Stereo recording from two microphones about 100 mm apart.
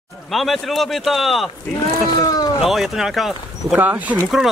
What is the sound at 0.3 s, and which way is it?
Speech, centre (ahead or behind).